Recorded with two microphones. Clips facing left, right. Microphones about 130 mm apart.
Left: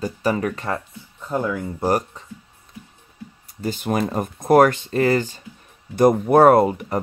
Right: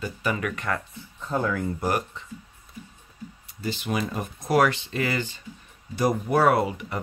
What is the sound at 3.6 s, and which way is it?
Speech, 45° left (ahead or behind).